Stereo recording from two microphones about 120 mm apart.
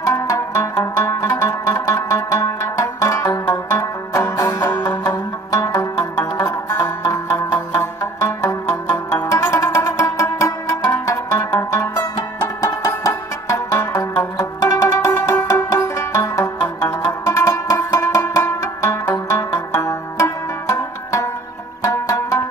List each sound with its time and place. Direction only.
0.0 s zither: 25° left (ahead or behind)
3.4 s music: 25° left (ahead or behind)